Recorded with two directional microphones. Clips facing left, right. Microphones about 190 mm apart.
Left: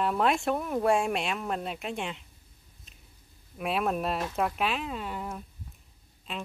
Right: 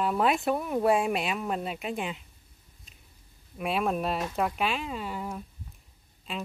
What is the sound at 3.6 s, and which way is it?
Speech, centre (ahead or behind).